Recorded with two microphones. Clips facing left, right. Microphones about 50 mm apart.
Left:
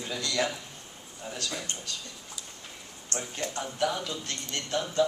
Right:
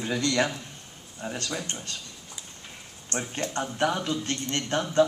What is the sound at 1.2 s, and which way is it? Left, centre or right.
Speech, right.